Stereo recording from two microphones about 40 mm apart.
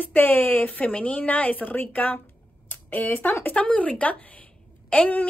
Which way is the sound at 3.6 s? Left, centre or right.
Left.